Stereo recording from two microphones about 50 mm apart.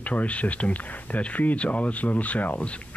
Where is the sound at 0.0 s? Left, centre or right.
Left.